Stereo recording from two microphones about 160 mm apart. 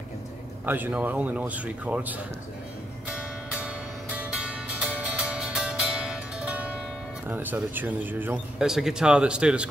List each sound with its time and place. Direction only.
0.7 s speech: 10° right (ahead or behind)
3.1 s music: 5° right (ahead or behind)
7.2 s speech: 10° right (ahead or behind)